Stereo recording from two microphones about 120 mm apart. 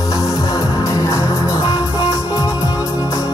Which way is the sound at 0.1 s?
25° left (ahead or behind).